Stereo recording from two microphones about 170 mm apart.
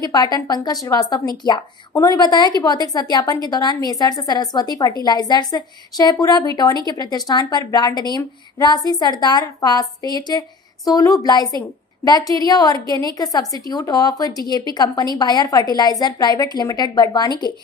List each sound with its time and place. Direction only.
0.0 s speech: 25° left (ahead or behind)